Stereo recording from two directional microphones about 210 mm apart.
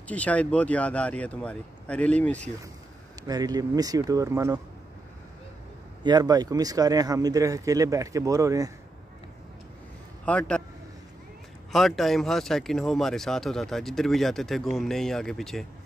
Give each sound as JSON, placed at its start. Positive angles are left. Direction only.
{"t": 0.1, "sound": "speech", "side_deg": 5}
{"t": 3.3, "sound": "speech", "side_deg": -20}
{"t": 6.0, "sound": "speech", "side_deg": -20}
{"t": 10.2, "sound": "speech", "side_deg": 5}
{"t": 11.7, "sound": "speech", "side_deg": 0}